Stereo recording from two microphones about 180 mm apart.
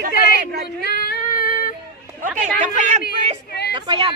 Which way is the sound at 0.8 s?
65° left (ahead or behind).